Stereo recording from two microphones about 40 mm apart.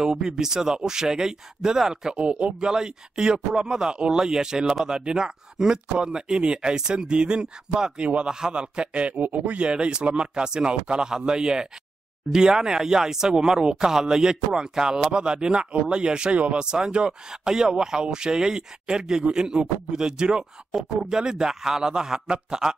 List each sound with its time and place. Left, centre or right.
0.0 s speech: centre
2.2 s speech: right
2.6 s speech: centre
8.3 s speech: centre
9.2 s speech: right
9.6 s speech: right
20.7 s speech: centre